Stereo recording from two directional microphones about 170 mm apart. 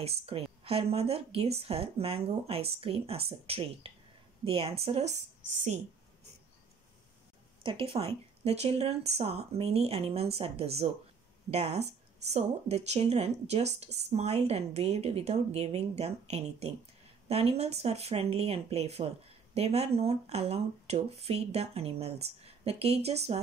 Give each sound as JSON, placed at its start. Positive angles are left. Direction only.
{"t": 0.0, "sound": "speech", "side_deg": -35}
{"t": 7.6, "sound": "speech", "side_deg": -30}